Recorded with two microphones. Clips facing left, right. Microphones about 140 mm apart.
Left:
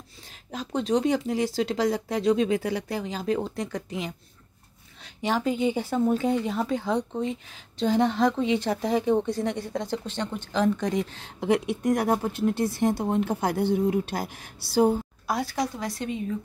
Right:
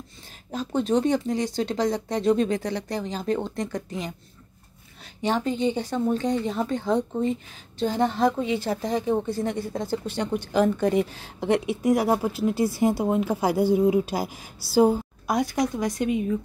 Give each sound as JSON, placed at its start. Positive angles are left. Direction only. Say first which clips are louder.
{"t": 0.5, "sound": "speech", "louder": "right 2 dB", "side_deg": 0}
{"t": 5.2, "sound": "speech", "louder": "right 1 dB", "side_deg": 5}
{"t": 15.2, "sound": "a woman's voice", "louder": "right 4 dB", "side_deg": -20}